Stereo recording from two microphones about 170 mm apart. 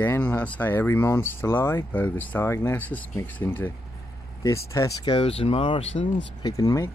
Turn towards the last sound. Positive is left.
turn(degrees=20)  # may be behind; listen again after turning